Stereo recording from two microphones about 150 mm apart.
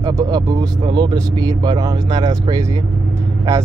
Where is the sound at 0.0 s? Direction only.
25° right (ahead or behind).